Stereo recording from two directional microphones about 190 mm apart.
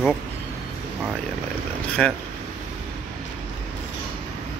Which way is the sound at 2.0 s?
Centre (ahead or behind).